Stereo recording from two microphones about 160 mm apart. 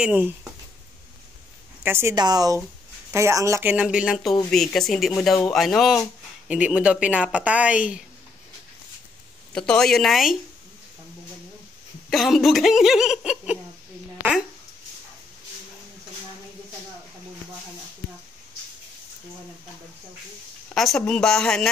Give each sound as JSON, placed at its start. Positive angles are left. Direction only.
{"t": 0.0, "sound": "speech", "side_deg": -5}
{"t": 1.8, "sound": "speech", "side_deg": -15}
{"t": 2.1, "sound": "speech", "side_deg": -25}
{"t": 9.5, "sound": "speech", "side_deg": 5}
{"t": 12.1, "sound": "speech", "side_deg": 0}
{"t": 20.7, "sound": "speech", "side_deg": 0}